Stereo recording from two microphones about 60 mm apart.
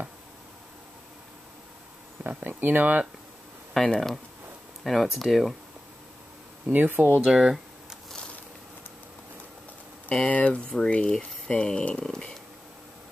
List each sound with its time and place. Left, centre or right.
2.2 s speech: right
3.9 s speech: centre
6.6 s speech: right
7.2 s a sound: centre
10.0 s speech: left